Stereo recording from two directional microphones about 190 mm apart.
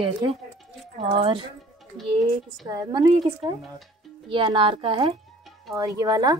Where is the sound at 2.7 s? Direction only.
20° right (ahead or behind).